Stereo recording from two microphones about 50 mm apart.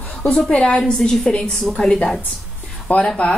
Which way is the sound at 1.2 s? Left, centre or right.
Centre.